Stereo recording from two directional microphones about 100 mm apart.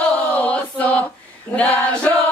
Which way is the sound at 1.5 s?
15° left (ahead or behind).